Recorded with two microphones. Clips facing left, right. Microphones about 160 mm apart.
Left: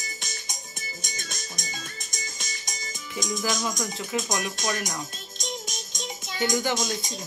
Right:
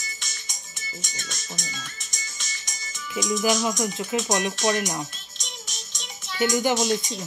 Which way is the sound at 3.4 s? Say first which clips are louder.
Right 6 dB; 25° right (ahead or behind).